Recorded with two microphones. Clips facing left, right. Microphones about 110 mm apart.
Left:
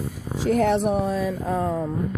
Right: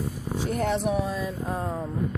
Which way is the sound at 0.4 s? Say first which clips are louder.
Left 7 dB; 85° left.